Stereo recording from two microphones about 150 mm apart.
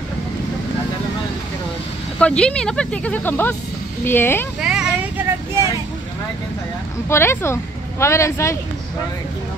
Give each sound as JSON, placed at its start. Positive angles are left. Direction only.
{"t": 2.1, "sound": "speech", "side_deg": 5}
{"t": 4.6, "sound": "vehicle", "side_deg": -5}
{"t": 7.1, "sound": "speech", "side_deg": 15}